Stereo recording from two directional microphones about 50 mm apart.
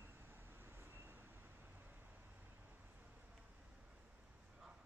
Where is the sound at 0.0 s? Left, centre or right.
Right.